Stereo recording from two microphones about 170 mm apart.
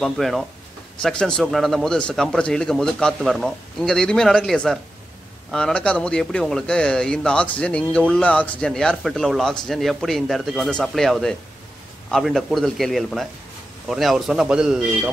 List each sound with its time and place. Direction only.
0.0 s a man's voice: centre (ahead or behind)